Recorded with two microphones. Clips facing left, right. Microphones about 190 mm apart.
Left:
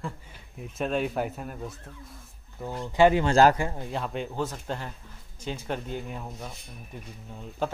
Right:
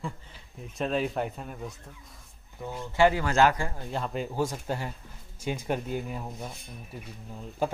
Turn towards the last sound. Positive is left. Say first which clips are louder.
# right 1 dB
turn(degrees=-10)  # may be behind; listen again after turning